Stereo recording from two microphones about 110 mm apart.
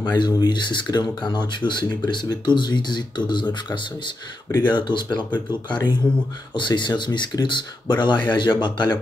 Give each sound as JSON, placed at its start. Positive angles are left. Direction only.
{"t": 0.0, "sound": "speech", "side_deg": 40}